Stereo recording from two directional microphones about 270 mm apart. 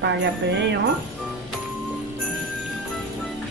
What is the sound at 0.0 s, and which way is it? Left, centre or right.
Speech, right.